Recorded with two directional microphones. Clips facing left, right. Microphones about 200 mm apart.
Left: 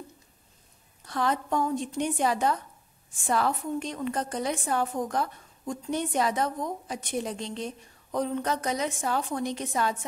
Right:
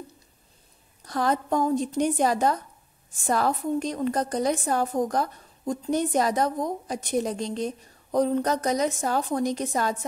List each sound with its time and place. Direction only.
1.0 s a woman's voice: 40° right (ahead or behind)